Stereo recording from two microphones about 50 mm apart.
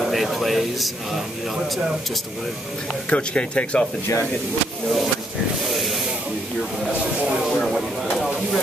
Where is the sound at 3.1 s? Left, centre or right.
Left.